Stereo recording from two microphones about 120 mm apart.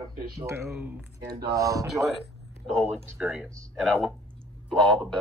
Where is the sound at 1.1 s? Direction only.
30° right (ahead or behind).